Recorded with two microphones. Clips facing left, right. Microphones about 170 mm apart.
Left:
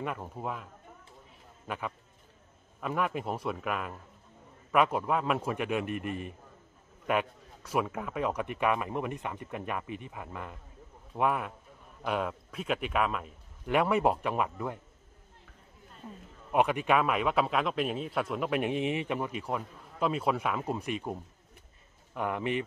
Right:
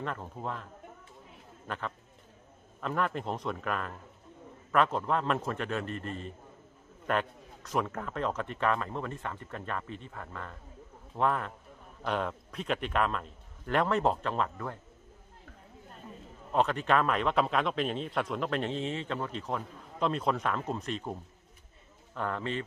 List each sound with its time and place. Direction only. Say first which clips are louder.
0.0 s a man's voice: left 1 dB; 10° left (ahead or behind)
1.7 s a man's voice: left 1 dB; 10° left (ahead or behind)
16.5 s a man's voice: left 1 dB; 10° left (ahead or behind)